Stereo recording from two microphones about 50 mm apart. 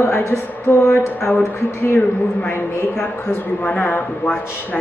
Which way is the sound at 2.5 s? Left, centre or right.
Left.